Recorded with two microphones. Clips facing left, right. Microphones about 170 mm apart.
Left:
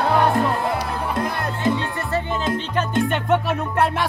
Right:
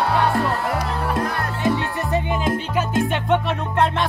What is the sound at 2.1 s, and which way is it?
Music, 10° right (ahead or behind).